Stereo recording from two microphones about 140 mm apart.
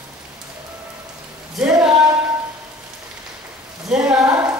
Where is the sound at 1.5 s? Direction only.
5° right (ahead or behind).